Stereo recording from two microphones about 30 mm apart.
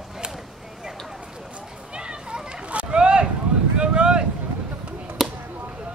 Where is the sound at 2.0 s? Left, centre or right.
Right.